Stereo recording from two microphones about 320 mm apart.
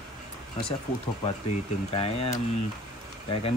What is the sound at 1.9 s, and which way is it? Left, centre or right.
Speech, centre.